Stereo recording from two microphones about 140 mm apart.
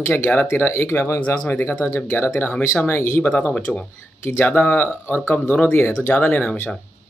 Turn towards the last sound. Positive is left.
turn(degrees=10)  # may be behind; listen again after turning